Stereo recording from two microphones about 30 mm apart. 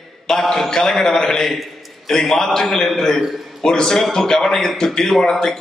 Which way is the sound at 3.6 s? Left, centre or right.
Centre.